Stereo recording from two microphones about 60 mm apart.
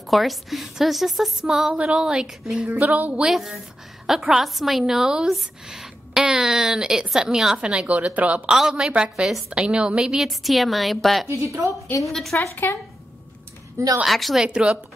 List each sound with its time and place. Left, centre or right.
0.0 s a woman's voice: centre
7.6 s a woman's voice: right
8.5 s a woman's voice: centre
11.2 s a woman's voice: right
12.1 s a woman's voice: centre
14.0 s a woman's voice: centre
14.4 s a woman's voice: centre